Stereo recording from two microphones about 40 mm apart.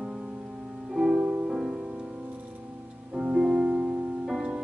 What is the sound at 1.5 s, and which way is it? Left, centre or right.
Music, centre.